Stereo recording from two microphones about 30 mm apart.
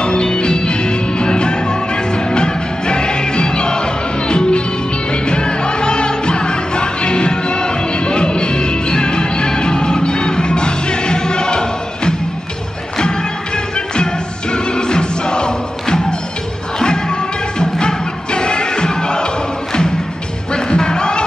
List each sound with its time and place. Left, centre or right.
0.0 s music: left
14.5 s music: left
17.6 s music: left
20.5 s music: left